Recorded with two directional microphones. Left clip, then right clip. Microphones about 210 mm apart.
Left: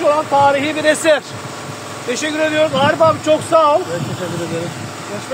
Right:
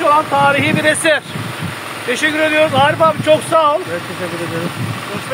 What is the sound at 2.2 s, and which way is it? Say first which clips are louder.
Speech: right 2 dB; 5° right (ahead or behind).